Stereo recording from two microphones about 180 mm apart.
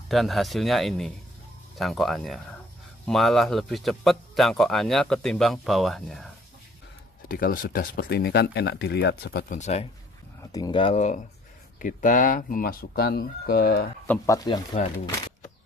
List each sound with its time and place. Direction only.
0.1 s speech: centre (ahead or behind)
7.2 s speech: 50° left (ahead or behind)
9.5 s speech: 40° left (ahead or behind)
10.5 s speech: 25° left (ahead or behind)
11.8 s speech: 45° left (ahead or behind)
14.2 s speech: 20° left (ahead or behind)